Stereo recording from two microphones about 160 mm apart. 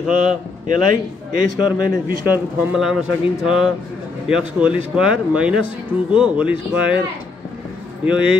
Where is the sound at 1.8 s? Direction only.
65° right (ahead or behind).